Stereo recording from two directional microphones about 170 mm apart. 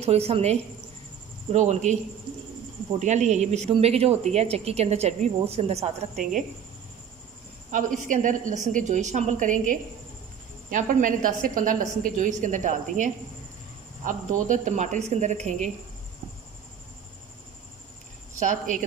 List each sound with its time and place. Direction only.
0.0 s a woman's voice: 35° right (ahead or behind)
3.0 s a woman's voice: 45° right (ahead or behind)
7.7 s a woman's voice: 50° right (ahead or behind)
18.3 s a woman's voice: 45° right (ahead or behind)